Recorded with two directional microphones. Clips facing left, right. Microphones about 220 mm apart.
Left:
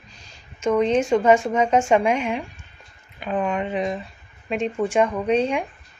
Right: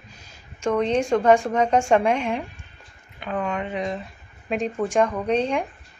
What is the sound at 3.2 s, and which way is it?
Speech, 20° left (ahead or behind).